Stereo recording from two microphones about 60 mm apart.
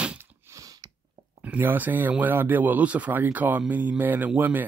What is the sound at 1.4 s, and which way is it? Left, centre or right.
Speech, right.